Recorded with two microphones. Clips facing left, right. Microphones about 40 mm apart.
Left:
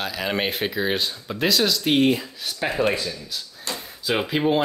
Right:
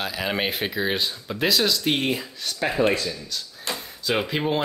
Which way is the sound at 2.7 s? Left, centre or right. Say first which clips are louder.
Right 1 dB; centre.